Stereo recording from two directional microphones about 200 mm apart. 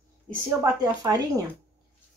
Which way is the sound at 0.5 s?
20° right (ahead or behind).